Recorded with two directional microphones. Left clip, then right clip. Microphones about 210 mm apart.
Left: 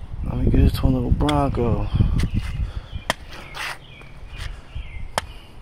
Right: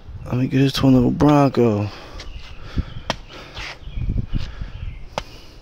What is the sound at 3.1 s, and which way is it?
Crow, 60° left (ahead or behind).